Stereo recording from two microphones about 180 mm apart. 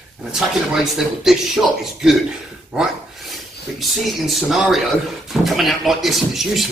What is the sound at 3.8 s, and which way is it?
Speech, centre (ahead or behind).